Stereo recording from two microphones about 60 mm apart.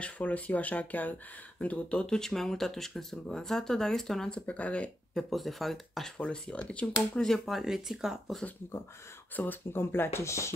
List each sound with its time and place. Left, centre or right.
0.0 s speech: left; by 4.4 s centre
4.4 s speech: left
5.1 s speech: centre
6.1 s speech: centre
7.2 s speech: centre
9.4 s speech: left
10.2 s speech: left